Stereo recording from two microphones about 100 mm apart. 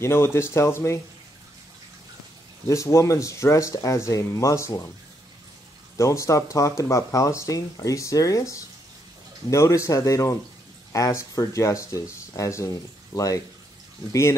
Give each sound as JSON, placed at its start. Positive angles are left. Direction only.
{"t": 0.0, "sound": "speech", "side_deg": 25}
{"t": 2.7, "sound": "speech", "side_deg": 30}
{"t": 5.9, "sound": "speech", "side_deg": 30}